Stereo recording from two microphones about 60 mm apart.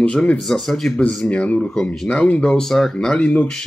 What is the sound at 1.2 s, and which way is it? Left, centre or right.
Speech, left.